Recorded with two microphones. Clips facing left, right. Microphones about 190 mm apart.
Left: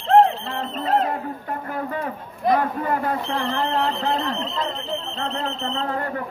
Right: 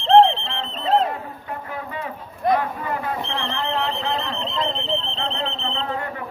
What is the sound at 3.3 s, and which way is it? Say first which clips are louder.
Smoke detector: left 3 dB; 35° left (ahead or behind).